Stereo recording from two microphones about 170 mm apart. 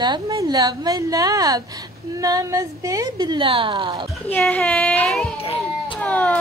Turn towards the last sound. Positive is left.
turn(degrees=10)  # may be behind; listen again after turning